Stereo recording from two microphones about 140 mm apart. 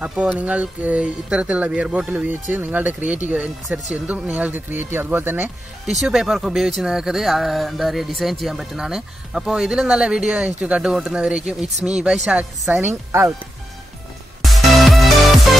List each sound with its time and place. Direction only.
0.0 s speech: 10° right (ahead or behind)
12.8 s speech: 20° right (ahead or behind)
14.4 s music: centre (ahead or behind)